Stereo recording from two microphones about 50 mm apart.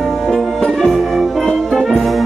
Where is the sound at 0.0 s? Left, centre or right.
Centre.